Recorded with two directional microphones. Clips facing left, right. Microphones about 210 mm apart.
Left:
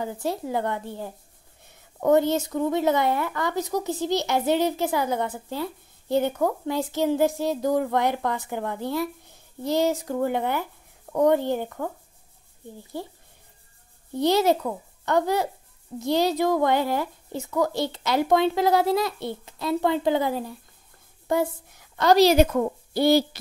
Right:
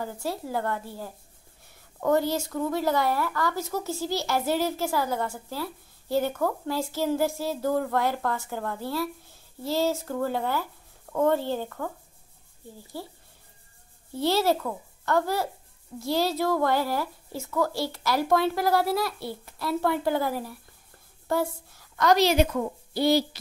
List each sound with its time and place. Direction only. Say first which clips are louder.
0.0 s speech: left 4 dB; 20° left (ahead or behind)
12.9 s speech: left 4 dB; 20° left (ahead or behind)
14.1 s speech: left 3 dB; 20° left (ahead or behind)
21.3 s a sound: left 3 dB; 20° left (ahead or behind)
22.0 s a woman's voice: left 4 dB; 35° left (ahead or behind); by 23.4 s 55° left (ahead or behind)